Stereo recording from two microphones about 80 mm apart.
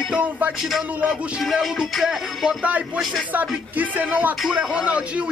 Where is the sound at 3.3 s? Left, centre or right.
Right.